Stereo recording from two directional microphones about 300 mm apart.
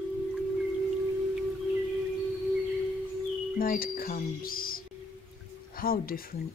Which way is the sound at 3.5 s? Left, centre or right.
Left.